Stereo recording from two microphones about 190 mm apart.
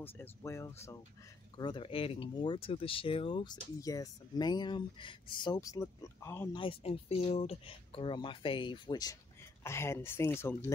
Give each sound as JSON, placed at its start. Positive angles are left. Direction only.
{"t": 0.0, "sound": "speech", "side_deg": 15}
{"t": 1.6, "sound": "speech", "side_deg": 25}
{"t": 6.5, "sound": "speech", "side_deg": 30}